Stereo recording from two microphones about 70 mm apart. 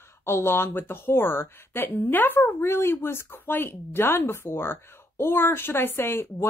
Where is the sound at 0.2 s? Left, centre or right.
Left.